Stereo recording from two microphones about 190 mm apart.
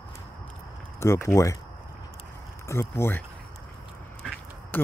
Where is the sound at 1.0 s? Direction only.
15° left (ahead or behind).